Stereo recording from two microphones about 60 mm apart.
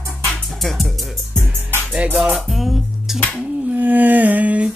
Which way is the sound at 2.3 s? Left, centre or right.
Centre.